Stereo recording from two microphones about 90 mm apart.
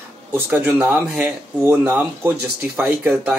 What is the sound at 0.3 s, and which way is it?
A man's voice, 20° right (ahead or behind).